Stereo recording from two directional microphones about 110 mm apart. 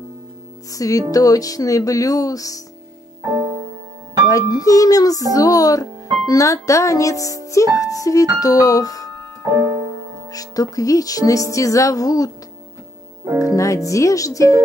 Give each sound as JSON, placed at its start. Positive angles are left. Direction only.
{"t": 0.7, "sound": "speech", "side_deg": 30}
{"t": 3.2, "sound": "music", "side_deg": -25}
{"t": 4.3, "sound": "speech", "side_deg": 30}
{"t": 9.4, "sound": "music", "side_deg": -25}
{"t": 10.3, "sound": "speech", "side_deg": 35}
{"t": 13.4, "sound": "speech", "side_deg": 30}